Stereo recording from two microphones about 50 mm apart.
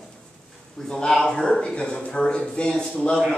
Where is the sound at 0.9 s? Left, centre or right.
Centre.